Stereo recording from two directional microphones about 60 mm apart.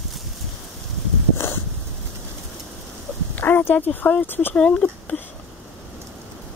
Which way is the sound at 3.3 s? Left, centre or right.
Left.